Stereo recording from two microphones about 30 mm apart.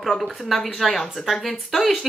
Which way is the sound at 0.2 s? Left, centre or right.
Centre.